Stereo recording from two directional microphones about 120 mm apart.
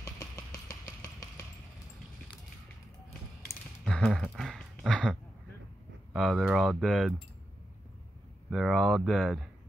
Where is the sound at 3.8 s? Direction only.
5° left (ahead or behind).